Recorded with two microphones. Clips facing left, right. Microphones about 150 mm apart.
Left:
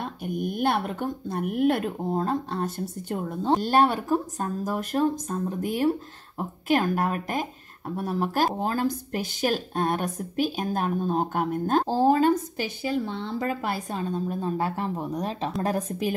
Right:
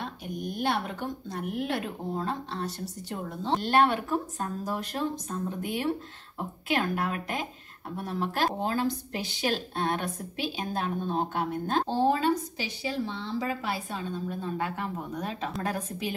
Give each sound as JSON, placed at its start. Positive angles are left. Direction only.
{"t": 0.0, "sound": "a woman's voice", "side_deg": 55}